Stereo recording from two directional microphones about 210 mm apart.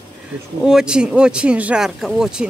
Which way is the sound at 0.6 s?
5° right (ahead or behind).